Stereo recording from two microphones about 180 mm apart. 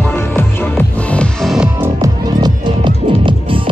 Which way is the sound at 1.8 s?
20° right (ahead or behind).